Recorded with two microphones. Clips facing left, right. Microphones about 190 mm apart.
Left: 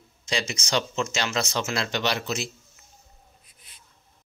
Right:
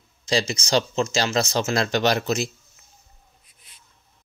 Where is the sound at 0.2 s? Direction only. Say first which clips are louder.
Right 6 dB; 35° right (ahead or behind).